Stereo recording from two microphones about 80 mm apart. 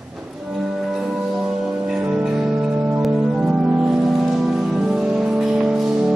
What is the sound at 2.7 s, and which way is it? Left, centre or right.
Music, right.